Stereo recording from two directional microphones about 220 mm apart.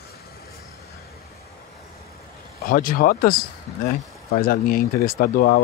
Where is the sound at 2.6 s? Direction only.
40° left (ahead or behind).